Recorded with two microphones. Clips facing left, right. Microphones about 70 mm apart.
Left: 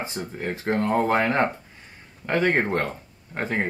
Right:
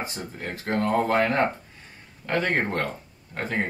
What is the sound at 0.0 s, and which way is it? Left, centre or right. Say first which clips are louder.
Speech: left 3 dB; left.